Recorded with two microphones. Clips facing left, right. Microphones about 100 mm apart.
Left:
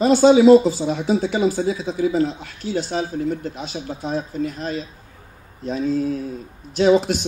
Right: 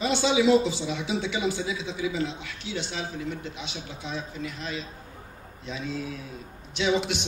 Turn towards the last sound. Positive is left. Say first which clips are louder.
# left 10 dB
turn(degrees=40)  # may be behind; listen again after turning